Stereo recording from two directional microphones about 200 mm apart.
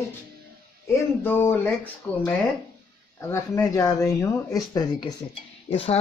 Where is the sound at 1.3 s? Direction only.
10° left (ahead or behind).